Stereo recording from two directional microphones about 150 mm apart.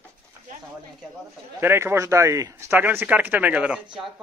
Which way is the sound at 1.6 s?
15° right (ahead or behind).